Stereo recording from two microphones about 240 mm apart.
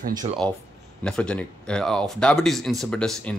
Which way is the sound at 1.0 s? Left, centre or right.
Centre.